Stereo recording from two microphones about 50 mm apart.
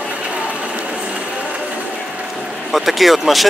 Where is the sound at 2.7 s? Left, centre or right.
Centre.